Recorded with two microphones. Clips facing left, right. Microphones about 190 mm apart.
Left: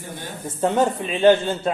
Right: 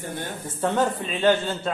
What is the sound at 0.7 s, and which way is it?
A man's voice, 20° left (ahead or behind).